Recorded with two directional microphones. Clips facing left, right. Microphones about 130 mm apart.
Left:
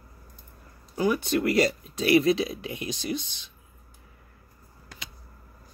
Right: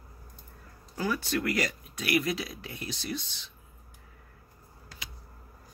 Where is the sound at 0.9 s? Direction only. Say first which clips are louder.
Left 6 dB; 20° left (ahead or behind).